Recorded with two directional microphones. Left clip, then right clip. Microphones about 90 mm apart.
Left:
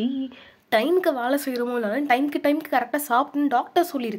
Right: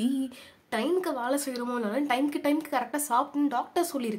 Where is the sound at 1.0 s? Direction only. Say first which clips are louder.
Left 6 dB; 30° left (ahead or behind).